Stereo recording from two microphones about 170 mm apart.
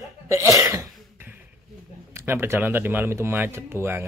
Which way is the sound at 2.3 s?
15° right (ahead or behind).